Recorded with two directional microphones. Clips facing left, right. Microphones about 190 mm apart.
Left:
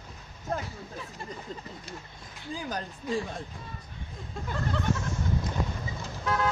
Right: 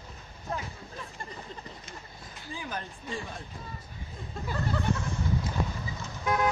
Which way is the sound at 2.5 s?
40° left (ahead or behind).